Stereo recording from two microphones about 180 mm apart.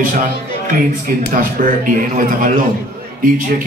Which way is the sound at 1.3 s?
50° right (ahead or behind).